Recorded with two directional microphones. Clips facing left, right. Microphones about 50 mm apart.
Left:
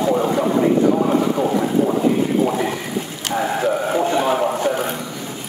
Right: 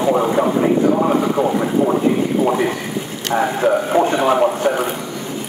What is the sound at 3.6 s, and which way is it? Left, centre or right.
Speech, right.